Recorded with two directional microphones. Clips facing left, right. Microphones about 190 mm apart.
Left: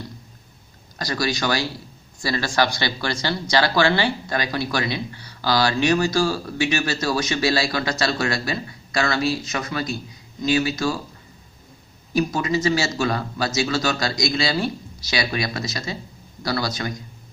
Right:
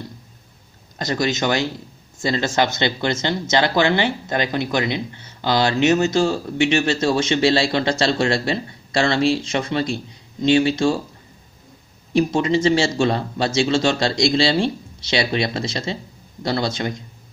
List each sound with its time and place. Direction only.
0.9 s speech: 20° right (ahead or behind)
12.1 s speech: 25° right (ahead or behind)